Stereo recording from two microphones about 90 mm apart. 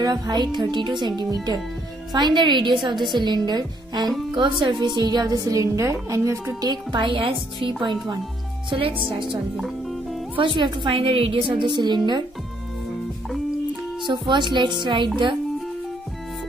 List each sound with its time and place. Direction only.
0.0 s a woman's voice: 50° right (ahead or behind); by 6.5 s 30° right (ahead or behind)
6.6 s a woman's voice: 55° right (ahead or behind)
8.6 s a woman's voice: 75° right (ahead or behind); by 12.3 s 55° right (ahead or behind)
14.0 s a woman's voice: 60° right (ahead or behind)